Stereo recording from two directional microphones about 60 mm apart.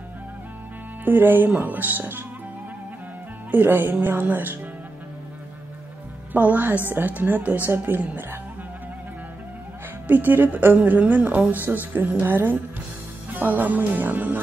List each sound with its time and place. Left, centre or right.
1.0 s a woman's voice: right
3.5 s a woman's voice: right
6.3 s a woman's voice: right
10.0 s a woman's voice: right